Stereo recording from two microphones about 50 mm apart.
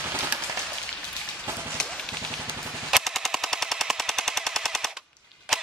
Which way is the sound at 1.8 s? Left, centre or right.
Centre.